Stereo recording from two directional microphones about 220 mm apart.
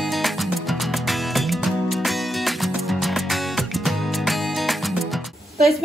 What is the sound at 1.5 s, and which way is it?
Music, centre (ahead or behind).